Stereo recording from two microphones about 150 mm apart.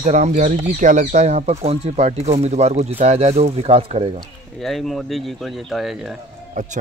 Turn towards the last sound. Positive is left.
turn(degrees=-55)  # may be behind; listen again after turning